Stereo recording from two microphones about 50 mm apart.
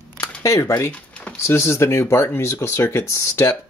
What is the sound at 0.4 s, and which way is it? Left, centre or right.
Speech, left.